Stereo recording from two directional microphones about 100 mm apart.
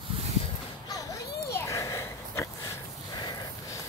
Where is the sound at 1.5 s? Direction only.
30° left (ahead or behind).